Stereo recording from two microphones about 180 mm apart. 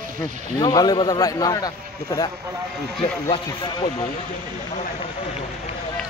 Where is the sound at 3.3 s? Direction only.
30° left (ahead or behind).